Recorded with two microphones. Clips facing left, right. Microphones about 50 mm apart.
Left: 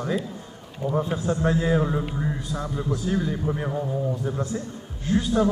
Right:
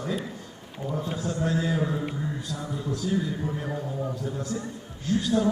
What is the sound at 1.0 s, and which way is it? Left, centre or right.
Speech, left.